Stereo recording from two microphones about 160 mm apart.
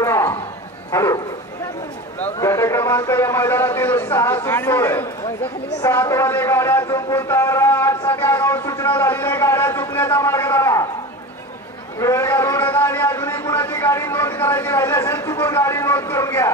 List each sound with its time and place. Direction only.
0.0 s a sound: 15° left (ahead or behind)
0.9 s speech: 20° left (ahead or behind)
2.3 s a man's voice: 15° left (ahead or behind)
12.0 s a man's voice: 15° left (ahead or behind)